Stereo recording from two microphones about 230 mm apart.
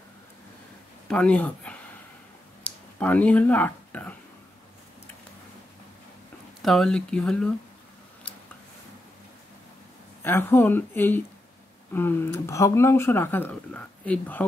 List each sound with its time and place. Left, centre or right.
1.0 s a sound: centre
6.6 s speech: centre
10.2 s speech: centre